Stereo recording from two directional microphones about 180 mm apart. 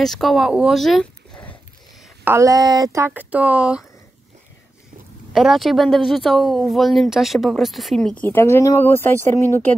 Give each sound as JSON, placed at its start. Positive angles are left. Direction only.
{"t": 0.0, "sound": "speech", "side_deg": 0}
{"t": 2.2, "sound": "speech", "side_deg": -15}
{"t": 3.1, "sound": "speech", "side_deg": -5}
{"t": 5.3, "sound": "speech", "side_deg": 0}